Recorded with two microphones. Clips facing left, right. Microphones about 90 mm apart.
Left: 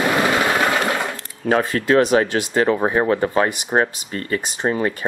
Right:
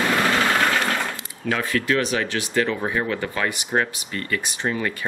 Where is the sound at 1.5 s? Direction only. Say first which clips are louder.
Left 6 dB; 35° left (ahead or behind).